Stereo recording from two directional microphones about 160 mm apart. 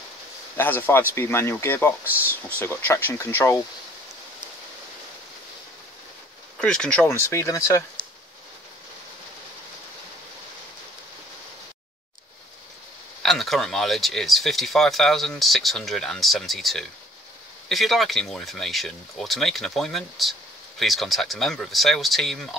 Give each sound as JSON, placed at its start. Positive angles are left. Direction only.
{"t": 0.6, "sound": "speech", "side_deg": 10}
{"t": 2.0, "sound": "speech", "side_deg": -10}
{"t": 2.6, "sound": "speech", "side_deg": 15}
{"t": 6.6, "sound": "speech", "side_deg": 5}
{"t": 13.2, "sound": "speech", "side_deg": 0}